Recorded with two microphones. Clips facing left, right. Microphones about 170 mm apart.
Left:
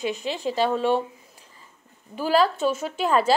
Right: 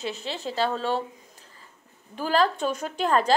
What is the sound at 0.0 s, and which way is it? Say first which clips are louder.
A woman's voice: left 5 dB; 15° left (ahead or behind).